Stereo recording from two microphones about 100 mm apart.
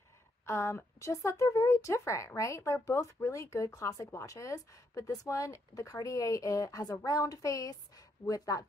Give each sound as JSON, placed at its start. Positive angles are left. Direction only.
{"t": 0.5, "sound": "speech", "side_deg": 30}